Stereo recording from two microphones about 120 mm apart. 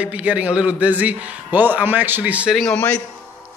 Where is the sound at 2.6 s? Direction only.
10° left (ahead or behind).